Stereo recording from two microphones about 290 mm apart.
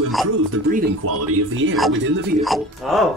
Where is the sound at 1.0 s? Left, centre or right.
Right.